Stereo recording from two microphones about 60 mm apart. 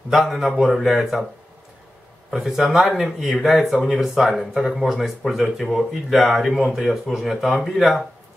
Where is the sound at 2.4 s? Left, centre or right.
Centre.